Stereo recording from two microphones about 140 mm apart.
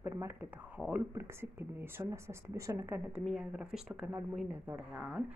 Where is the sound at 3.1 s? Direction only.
5° right (ahead or behind).